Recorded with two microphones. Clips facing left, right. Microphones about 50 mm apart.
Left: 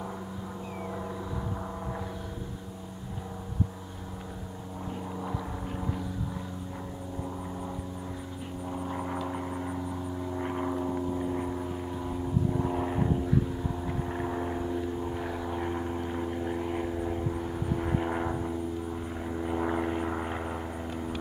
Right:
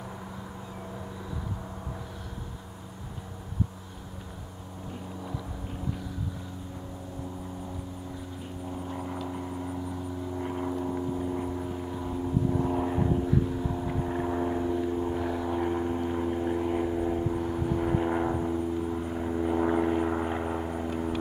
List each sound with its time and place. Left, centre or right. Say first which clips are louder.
8.8 s vehicle: left 3 dB; centre